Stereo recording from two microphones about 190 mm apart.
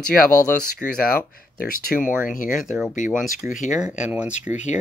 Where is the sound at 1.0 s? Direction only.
50° left (ahead or behind).